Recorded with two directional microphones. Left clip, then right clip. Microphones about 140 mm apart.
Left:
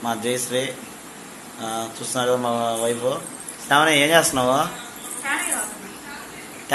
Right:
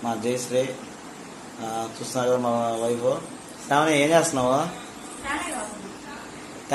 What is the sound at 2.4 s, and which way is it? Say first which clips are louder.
Mantra: left 2 dB; 5° left (ahead or behind).